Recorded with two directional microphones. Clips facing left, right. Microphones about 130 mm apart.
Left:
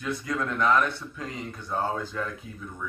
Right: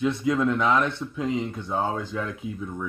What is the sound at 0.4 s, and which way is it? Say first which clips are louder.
Speech: left 1 dB; 15° right (ahead or behind).